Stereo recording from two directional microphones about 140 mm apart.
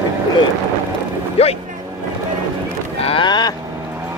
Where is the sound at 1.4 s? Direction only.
50° left (ahead or behind).